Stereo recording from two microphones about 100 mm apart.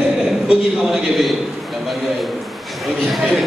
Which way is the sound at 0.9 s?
Centre (ahead or behind).